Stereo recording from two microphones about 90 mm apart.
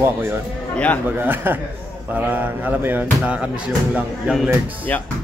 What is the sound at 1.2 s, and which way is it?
Music, 20° right (ahead or behind).